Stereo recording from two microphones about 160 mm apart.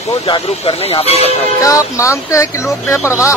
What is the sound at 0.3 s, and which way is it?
Speech, 35° left (ahead or behind).